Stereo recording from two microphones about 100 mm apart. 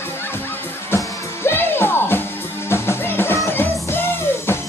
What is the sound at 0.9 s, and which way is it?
Music, 25° left (ahead or behind).